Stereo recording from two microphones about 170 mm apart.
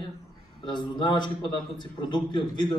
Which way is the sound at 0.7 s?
25° left (ahead or behind).